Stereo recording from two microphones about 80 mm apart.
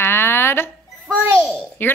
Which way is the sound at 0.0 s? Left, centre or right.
Left.